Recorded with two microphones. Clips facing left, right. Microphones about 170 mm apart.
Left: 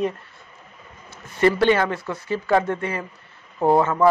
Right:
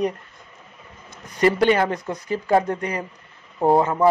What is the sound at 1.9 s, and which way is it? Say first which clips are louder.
Speech: even; 20° right (ahead or behind).